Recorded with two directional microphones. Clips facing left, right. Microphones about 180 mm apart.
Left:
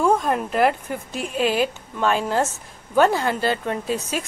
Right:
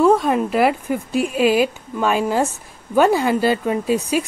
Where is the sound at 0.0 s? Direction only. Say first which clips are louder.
Right 5 dB; 5° right (ahead or behind).